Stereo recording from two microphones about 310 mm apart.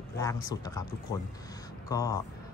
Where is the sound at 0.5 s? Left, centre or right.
Centre.